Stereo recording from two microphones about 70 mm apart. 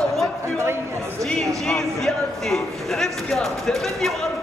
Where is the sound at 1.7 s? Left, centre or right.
Centre.